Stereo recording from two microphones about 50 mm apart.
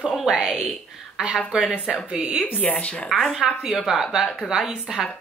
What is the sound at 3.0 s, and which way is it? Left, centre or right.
Speech, centre.